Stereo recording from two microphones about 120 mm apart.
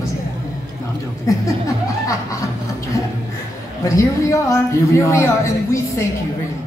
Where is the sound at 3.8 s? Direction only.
25° left (ahead or behind).